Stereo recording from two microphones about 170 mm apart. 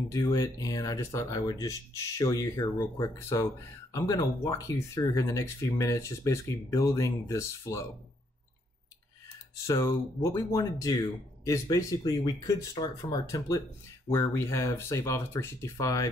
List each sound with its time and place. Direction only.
0.1 s speech: 20° left (ahead or behind)
9.7 s speech: 15° left (ahead or behind)